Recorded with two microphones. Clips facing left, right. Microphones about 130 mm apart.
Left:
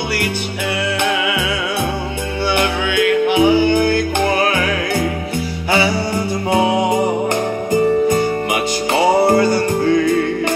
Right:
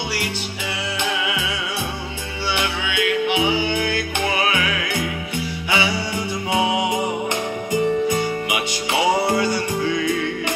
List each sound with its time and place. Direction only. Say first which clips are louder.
0.9 s music: left 4 dB; 60° left (ahead or behind)